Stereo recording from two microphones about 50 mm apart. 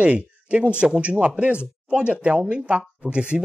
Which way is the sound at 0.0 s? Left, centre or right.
Right.